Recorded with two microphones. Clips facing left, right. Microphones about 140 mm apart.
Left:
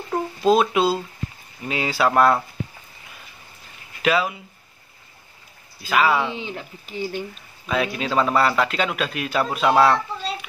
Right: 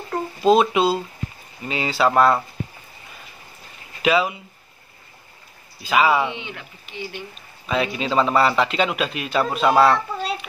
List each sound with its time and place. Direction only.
0.1 s a man's voice: centre (ahead or behind)
4.0 s speech: centre (ahead or behind)
5.8 s a man's voice: centre (ahead or behind)
6.3 s speech: 35° left (ahead or behind)
7.6 s a man's voice: centre (ahead or behind)